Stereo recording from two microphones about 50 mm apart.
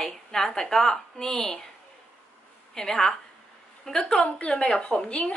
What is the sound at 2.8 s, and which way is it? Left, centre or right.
Speech, centre.